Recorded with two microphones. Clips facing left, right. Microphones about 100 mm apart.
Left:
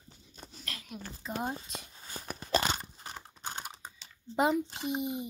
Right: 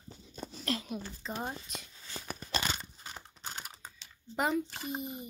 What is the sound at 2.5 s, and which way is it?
Crunch, 35° left (ahead or behind).